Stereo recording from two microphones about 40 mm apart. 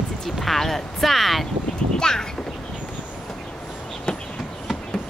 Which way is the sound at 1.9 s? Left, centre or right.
Centre.